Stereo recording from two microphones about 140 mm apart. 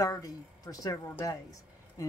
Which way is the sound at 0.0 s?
25° left (ahead or behind).